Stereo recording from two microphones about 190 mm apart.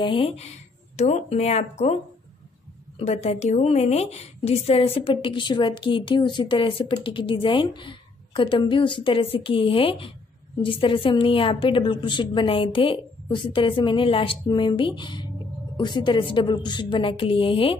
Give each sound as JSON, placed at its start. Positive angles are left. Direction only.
{"t": 0.0, "sound": "a woman's voice", "side_deg": 25}
{"t": 3.0, "sound": "a woman's voice", "side_deg": 35}